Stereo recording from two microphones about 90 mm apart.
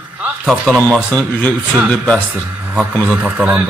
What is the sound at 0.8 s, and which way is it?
Speech, 20° left (ahead or behind).